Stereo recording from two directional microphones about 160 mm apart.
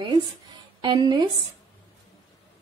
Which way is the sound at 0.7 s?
30° right (ahead or behind).